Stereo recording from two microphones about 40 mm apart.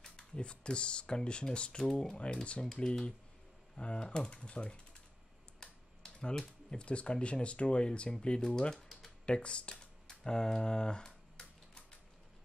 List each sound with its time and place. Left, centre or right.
0.0 s speech: left
5.6 s typing: centre
6.7 s speech: left
9.2 s a sound: left